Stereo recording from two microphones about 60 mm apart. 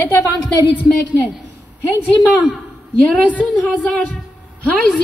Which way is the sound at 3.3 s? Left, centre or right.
Left.